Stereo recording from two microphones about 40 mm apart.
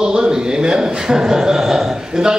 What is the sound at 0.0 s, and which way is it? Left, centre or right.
A man's voice, centre.